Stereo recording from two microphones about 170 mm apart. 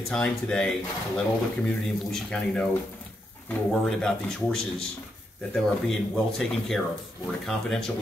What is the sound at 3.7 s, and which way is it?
Speech, centre (ahead or behind).